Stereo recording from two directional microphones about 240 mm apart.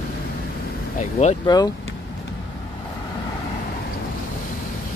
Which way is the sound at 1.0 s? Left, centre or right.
Left.